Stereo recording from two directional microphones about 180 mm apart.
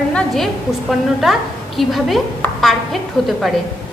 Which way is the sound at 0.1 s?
Centre (ahead or behind).